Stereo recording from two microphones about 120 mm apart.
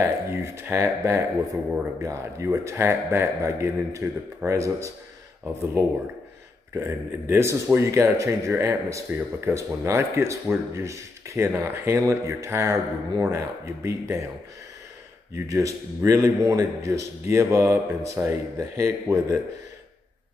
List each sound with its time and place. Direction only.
0.0 s speech: 20° right (ahead or behind)
6.7 s speech: 20° right (ahead or behind)
15.3 s speech: 25° right (ahead or behind)